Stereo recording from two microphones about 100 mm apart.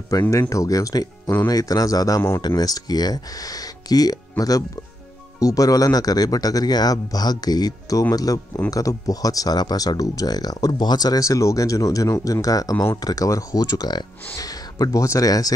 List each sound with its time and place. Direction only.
0.3 s speech: 30° left (ahead or behind)